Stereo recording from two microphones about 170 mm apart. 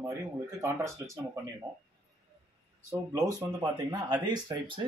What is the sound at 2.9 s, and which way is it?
Speech, 20° right (ahead or behind).